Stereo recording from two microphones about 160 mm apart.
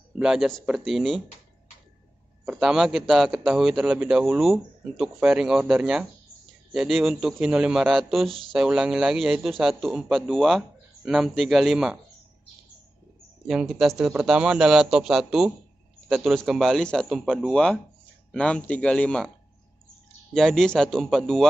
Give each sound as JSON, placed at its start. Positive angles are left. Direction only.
{"t": 0.2, "sound": "a man's voice", "side_deg": -5}
{"t": 2.4, "sound": "a man's voice", "side_deg": -5}
{"t": 8.3, "sound": "speech", "side_deg": -35}
{"t": 8.5, "sound": "a man's voice", "side_deg": -5}
{"t": 13.5, "sound": "a man's voice", "side_deg": 0}
{"t": 20.3, "sound": "a man's voice", "side_deg": 0}